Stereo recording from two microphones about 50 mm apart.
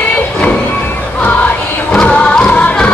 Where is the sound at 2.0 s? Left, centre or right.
Centre.